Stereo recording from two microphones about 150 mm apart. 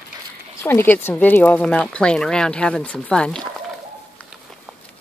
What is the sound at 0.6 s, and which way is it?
Speech, 15° left (ahead or behind).